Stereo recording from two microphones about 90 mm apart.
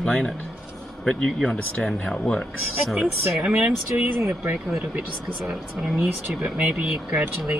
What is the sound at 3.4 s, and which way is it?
Speech, 15° right (ahead or behind).